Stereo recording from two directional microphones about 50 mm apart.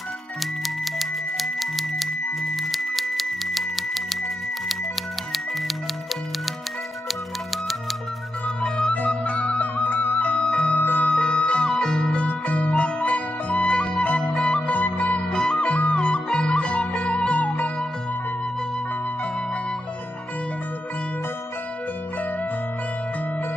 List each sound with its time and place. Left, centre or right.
0.9 s music: centre
7.1 s music: centre
8.6 s music: centre
10.4 s music: centre
10.8 s music: left
11.1 s music: centre
15.1 s music: centre